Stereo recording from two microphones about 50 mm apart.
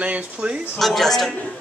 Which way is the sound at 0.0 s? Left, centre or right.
Right.